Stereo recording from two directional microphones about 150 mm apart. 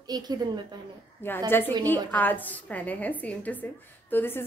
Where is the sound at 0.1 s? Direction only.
25° right (ahead or behind).